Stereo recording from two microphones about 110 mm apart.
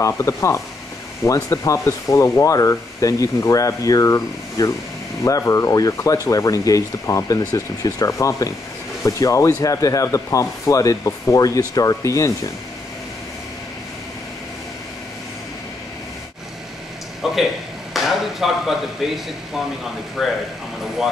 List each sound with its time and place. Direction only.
0.0 s speech: 30° left (ahead or behind)
17.2 s a sound: 5° right (ahead or behind)
17.9 s speech: centre (ahead or behind)